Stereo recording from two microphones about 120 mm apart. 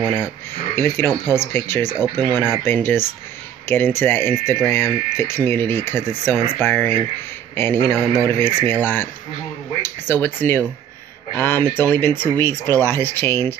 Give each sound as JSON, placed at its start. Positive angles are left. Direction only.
{"t": 0.0, "sound": "speech", "side_deg": 20}